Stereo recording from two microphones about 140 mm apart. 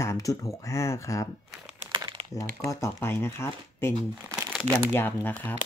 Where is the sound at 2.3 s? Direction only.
20° left (ahead or behind).